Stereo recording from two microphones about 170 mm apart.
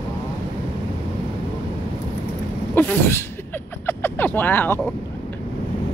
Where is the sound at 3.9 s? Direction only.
10° left (ahead or behind).